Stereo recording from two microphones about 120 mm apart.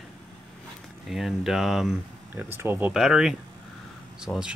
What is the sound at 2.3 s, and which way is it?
Speech, 20° right (ahead or behind).